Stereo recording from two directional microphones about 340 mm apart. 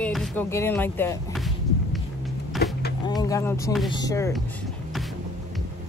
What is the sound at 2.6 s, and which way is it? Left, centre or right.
Vehicle, left.